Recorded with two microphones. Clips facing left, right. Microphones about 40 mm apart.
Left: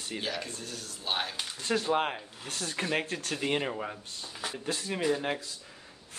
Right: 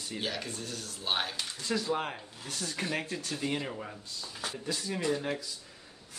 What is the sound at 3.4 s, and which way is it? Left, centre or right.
Speech, left.